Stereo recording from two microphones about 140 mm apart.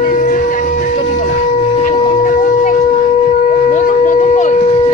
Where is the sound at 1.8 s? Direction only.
60° left (ahead or behind).